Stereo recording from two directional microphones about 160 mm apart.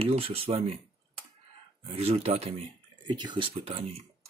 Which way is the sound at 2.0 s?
40° right (ahead or behind).